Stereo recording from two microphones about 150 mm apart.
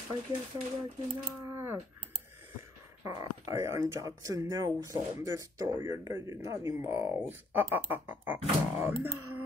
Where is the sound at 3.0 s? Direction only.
20° right (ahead or behind).